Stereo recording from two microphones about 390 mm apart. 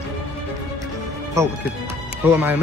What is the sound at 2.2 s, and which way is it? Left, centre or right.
Speech, centre.